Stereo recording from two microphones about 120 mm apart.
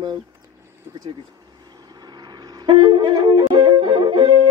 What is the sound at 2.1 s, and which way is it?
Wind instrument, 35° right (ahead or behind).